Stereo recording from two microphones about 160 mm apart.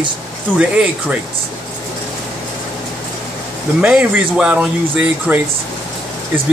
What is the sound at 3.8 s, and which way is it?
Speech, 10° right (ahead or behind).